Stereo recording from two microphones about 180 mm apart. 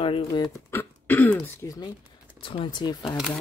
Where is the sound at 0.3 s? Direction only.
15° left (ahead or behind).